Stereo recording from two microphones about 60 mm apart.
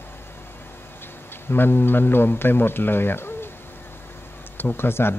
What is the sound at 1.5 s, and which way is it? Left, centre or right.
Speech, left.